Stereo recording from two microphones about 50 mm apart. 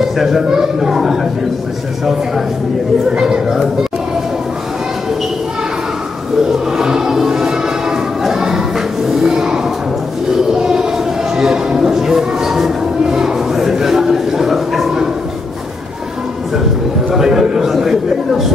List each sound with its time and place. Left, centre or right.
0.0 s a woman's voice: centre
3.1 s a woman's voice: centre
6.8 s music: centre
9.2 s a sound: centre
11.3 s music: centre
17.1 s a sound: centre